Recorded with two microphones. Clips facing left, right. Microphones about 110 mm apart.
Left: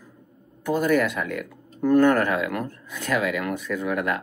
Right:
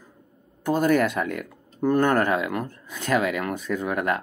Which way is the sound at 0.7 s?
35° right (ahead or behind).